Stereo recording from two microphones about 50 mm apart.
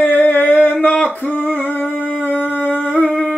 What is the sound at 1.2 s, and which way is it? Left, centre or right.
Humming, left.